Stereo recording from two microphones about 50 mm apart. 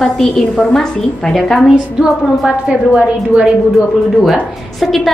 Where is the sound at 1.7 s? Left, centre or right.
Centre.